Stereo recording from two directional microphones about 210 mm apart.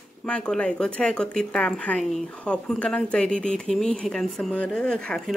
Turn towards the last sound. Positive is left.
turn(degrees=5)  # may be behind; listen again after turning